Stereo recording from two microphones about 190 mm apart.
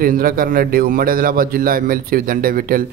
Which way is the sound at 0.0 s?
50° right (ahead or behind).